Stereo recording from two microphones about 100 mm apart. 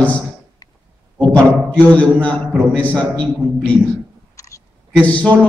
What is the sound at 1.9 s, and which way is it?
A man's voice, 15° left (ahead or behind).